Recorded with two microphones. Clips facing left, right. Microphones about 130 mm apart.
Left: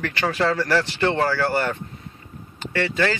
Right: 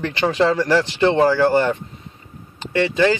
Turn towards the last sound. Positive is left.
turn(degrees=-20)  # may be behind; listen again after turning